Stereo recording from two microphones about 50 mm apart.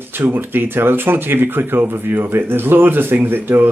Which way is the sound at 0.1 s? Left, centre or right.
Right.